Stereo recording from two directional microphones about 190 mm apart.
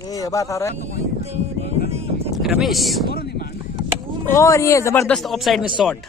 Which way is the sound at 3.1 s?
55° left (ahead or behind).